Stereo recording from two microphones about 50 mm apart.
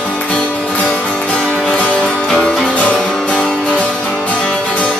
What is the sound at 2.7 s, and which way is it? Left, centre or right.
Music, left.